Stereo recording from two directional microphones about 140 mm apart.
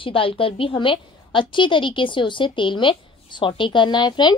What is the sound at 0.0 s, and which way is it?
A woman's voice, 40° left (ahead or behind).